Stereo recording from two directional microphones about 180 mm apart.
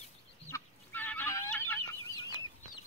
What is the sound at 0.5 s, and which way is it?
Fowl, 10° left (ahead or behind).